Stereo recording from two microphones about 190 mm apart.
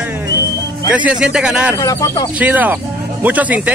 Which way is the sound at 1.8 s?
15° left (ahead or behind).